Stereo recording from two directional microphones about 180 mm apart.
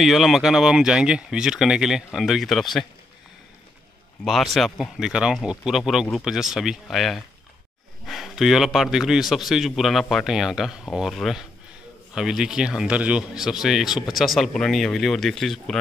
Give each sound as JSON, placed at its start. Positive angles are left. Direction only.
{"t": 0.0, "sound": "a man's voice", "side_deg": 0}
{"t": 4.2, "sound": "a man's voice", "side_deg": 0}